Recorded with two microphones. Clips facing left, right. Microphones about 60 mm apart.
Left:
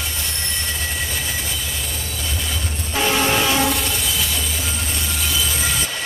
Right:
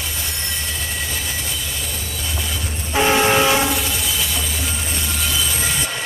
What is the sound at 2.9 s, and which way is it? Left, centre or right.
Train, right.